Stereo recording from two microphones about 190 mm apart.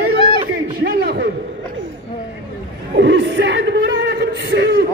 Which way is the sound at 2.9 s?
70° right (ahead or behind).